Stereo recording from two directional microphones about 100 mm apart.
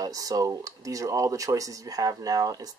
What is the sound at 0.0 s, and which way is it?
Speech, 40° right (ahead or behind).